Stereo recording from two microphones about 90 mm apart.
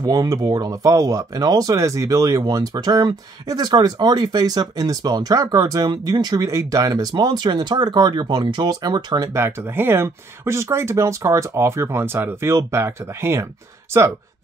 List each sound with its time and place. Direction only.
0.0 s speech: 40° right (ahead or behind)
2.4 s speech: 50° right (ahead or behind)
9.3 s speech: 25° right (ahead or behind)